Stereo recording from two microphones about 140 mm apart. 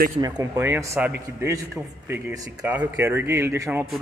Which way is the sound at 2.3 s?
25° right (ahead or behind).